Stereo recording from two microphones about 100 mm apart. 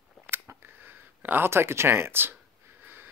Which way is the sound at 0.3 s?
25° right (ahead or behind).